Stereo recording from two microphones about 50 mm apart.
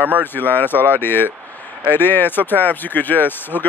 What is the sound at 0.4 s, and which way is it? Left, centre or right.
Speech, left.